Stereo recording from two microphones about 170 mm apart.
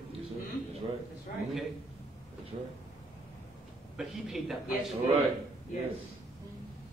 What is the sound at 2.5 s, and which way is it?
Speech, 40° right (ahead or behind).